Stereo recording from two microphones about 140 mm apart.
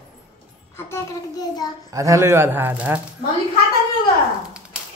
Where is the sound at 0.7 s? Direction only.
20° left (ahead or behind).